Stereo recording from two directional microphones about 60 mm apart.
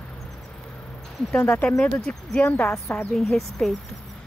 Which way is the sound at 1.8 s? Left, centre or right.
Centre.